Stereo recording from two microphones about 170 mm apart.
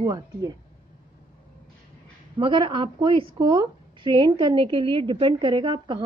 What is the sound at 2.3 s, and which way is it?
A woman's voice, 30° right (ahead or behind).